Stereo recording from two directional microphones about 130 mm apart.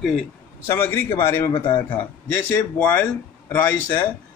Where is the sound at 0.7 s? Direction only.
15° left (ahead or behind).